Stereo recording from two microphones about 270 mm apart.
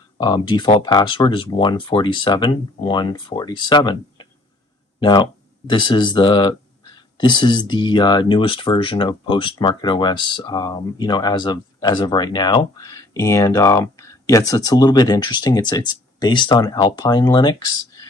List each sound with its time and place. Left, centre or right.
0.2 s speech: centre